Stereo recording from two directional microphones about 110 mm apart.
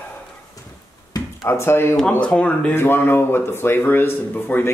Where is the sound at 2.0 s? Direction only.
10° left (ahead or behind).